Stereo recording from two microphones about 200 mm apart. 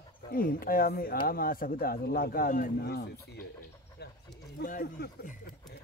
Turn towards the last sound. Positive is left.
turn(degrees=45)  # may be behind; listen again after turning